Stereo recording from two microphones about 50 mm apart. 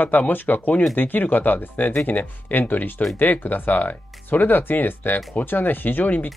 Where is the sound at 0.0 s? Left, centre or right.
Left.